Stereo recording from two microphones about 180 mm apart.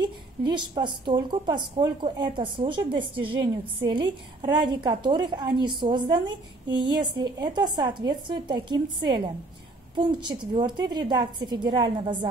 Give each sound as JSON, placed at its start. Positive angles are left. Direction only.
{"t": 0.4, "sound": "a woman's voice", "side_deg": -25}